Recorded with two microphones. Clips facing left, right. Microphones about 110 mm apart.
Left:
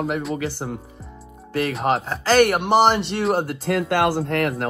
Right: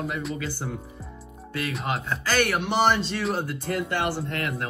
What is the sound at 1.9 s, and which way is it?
Speech, 30° left (ahead or behind).